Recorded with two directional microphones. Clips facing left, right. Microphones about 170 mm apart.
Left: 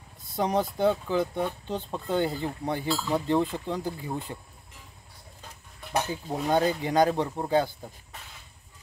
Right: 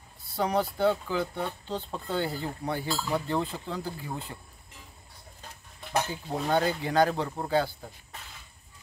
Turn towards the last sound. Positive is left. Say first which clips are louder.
# left 2 dB
turn(degrees=20)  # may be behind; listen again after turning